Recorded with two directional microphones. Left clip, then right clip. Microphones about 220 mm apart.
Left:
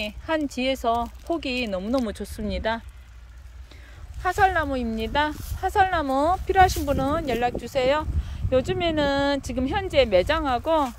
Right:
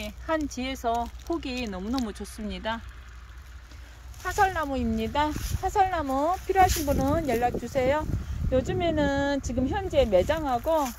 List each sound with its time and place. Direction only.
0.0 s speech: 10° left (ahead or behind)
4.2 s speech: 10° left (ahead or behind)